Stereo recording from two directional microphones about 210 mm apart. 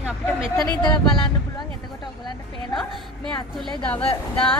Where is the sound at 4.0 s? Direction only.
25° left (ahead or behind).